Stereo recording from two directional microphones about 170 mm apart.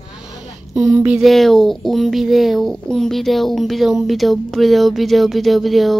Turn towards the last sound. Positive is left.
turn(degrees=0)  # may be behind; listen again after turning